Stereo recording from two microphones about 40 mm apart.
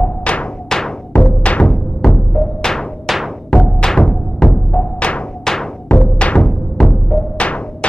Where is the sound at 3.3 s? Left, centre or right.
Centre.